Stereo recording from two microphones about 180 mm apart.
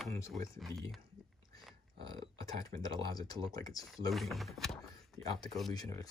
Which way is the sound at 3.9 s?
Centre (ahead or behind).